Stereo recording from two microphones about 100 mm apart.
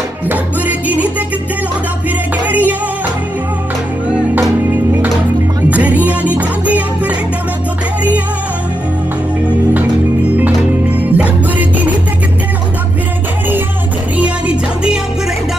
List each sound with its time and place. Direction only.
0.3 s music: 15° right (ahead or behind)
2.4 s music: 15° right (ahead or behind)
5.7 s music: 15° right (ahead or behind)
10.3 s music: 15° right (ahead or behind)
14.1 s music: 10° right (ahead or behind)